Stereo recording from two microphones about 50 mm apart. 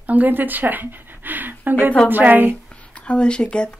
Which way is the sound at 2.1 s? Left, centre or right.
Right.